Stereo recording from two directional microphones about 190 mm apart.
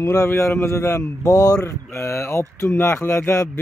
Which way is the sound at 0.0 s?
15° left (ahead or behind).